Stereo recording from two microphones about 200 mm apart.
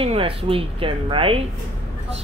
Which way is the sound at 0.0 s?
30° right (ahead or behind).